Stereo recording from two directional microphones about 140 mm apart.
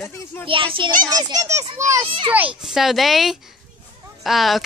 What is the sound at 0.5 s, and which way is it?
Speech, 40° right (ahead or behind).